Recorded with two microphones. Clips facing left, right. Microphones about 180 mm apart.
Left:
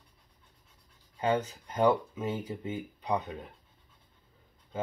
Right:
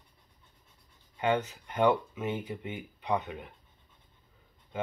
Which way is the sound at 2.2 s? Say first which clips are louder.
Even; 35° left (ahead or behind).